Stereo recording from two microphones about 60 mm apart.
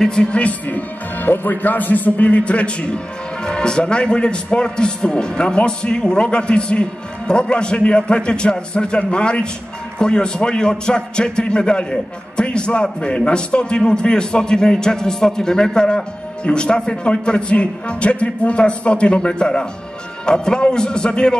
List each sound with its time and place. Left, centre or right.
0.0 s a man's voice: centre